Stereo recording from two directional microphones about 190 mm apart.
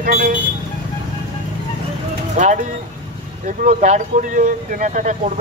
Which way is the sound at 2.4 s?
40° right (ahead or behind).